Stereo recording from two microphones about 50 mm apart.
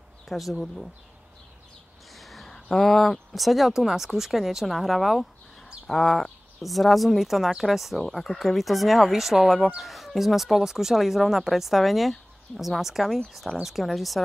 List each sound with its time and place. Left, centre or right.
0.3 s speech: centre
2.1 s a sound: centre
2.5 s speech: centre